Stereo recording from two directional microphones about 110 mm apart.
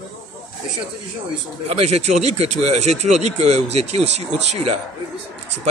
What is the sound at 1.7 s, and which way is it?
Speech, 75° right (ahead or behind).